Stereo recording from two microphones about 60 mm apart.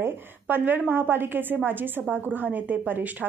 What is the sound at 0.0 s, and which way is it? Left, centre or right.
A woman's voice, right.